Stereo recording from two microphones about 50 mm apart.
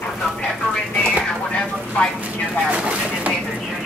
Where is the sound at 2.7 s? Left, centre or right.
Right.